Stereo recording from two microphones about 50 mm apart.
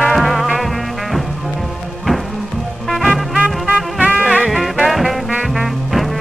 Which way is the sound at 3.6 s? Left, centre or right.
Right.